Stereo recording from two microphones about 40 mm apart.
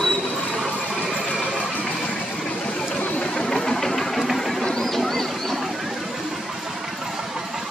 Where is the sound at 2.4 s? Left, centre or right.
Left.